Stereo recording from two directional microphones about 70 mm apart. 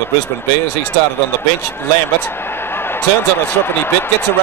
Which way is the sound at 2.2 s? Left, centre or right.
Left.